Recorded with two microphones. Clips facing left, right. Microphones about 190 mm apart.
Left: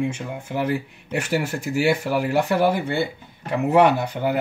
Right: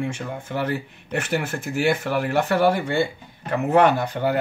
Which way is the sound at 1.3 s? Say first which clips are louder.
Left 3 dB; 5° left (ahead or behind).